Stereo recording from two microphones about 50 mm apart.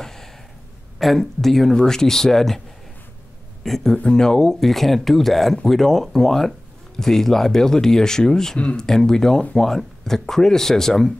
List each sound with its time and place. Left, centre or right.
0.0 s a sound: centre
0.9 s speech: centre
3.6 s speech: centre
8.5 s speech: left
8.8 s speech: centre